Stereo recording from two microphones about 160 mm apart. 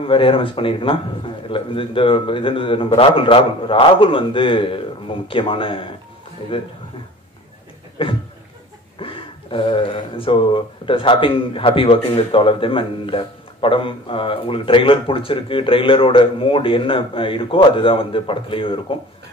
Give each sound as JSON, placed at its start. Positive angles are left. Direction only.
{"t": 0.0, "sound": "speech", "side_deg": 35}
{"t": 8.0, "sound": "speech", "side_deg": 35}